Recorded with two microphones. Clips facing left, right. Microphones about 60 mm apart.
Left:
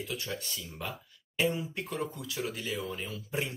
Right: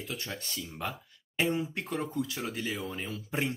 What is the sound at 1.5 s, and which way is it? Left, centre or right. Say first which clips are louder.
Speech: right 3 dB; right.